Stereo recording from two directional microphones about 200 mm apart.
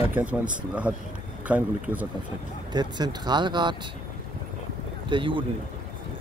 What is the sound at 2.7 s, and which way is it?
Speech, 20° right (ahead or behind).